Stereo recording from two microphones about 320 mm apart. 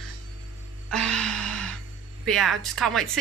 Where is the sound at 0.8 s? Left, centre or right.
Centre.